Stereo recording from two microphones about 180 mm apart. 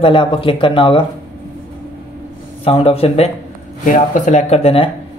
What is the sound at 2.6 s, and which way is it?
Speech, 30° left (ahead or behind).